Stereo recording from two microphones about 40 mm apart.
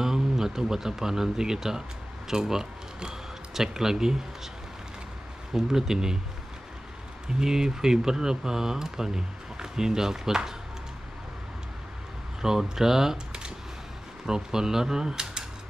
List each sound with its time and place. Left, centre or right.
0.0 s speech: centre
5.5 s speech: centre
7.3 s speech: centre
12.4 s speech: centre